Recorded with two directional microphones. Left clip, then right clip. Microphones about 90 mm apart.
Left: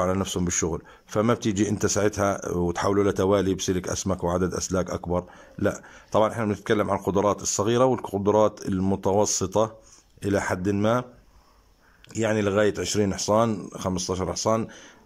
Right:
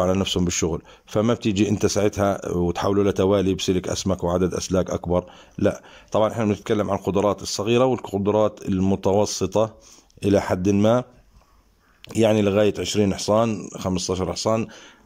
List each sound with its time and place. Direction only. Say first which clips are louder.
0.0 s speech: right 4 dB; 15° right (ahead or behind)
12.1 s speech: right 5 dB; 35° right (ahead or behind); by 14.8 s 10° right (ahead or behind)